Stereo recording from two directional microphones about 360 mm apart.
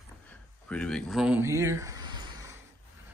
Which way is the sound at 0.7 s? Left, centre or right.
Centre.